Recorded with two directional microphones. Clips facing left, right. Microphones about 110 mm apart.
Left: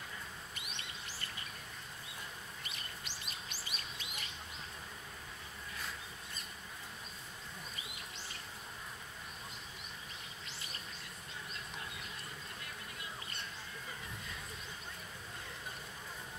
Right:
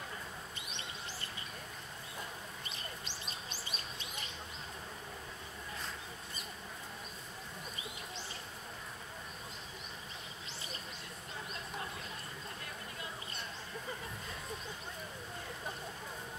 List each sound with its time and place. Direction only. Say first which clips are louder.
3.3 s chirp: right 2 dB; 30° right (ahead or behind)